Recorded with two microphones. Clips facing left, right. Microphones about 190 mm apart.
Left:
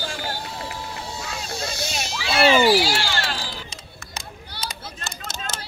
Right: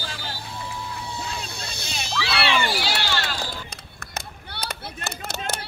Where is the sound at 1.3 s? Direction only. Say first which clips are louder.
Left 5 dB; 60° right (ahead or behind).